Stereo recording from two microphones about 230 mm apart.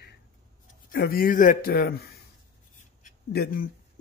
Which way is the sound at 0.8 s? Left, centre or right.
Left.